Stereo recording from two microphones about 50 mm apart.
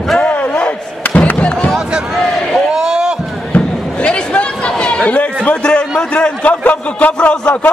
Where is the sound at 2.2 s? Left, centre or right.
Centre.